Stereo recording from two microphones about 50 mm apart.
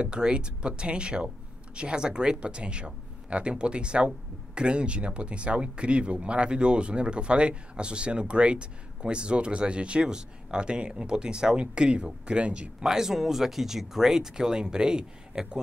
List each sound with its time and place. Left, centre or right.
0.0 s speech: centre
12.8 s speech: centre